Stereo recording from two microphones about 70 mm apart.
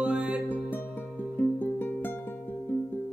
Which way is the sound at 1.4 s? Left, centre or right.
Left.